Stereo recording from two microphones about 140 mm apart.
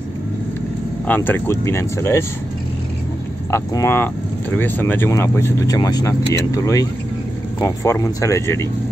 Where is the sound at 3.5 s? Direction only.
20° left (ahead or behind).